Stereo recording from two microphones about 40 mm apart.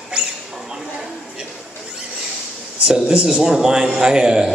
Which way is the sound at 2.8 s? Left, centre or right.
Right.